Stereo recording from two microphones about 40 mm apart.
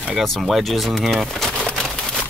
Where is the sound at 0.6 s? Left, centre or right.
Centre.